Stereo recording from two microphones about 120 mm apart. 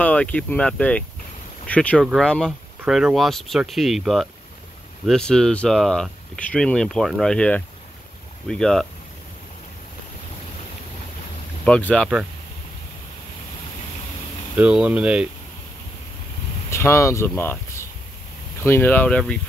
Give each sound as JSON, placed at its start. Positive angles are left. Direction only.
{"t": 0.0, "sound": "speech", "side_deg": 10}
{"t": 11.6, "sound": "speech", "side_deg": 10}
{"t": 14.6, "sound": "speech", "side_deg": -10}
{"t": 16.7, "sound": "speech", "side_deg": 25}